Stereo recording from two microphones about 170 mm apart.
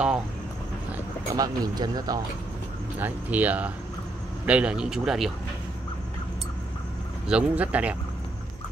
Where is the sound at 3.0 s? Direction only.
10° right (ahead or behind).